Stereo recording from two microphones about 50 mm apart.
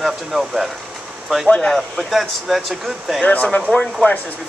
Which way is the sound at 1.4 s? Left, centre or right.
Left.